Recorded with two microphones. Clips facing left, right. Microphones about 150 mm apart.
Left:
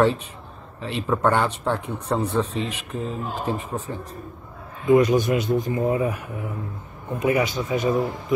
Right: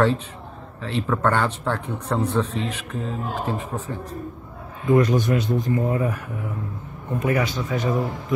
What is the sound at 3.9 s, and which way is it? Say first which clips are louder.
A man's voice: right 2 dB; 15° left (ahead or behind).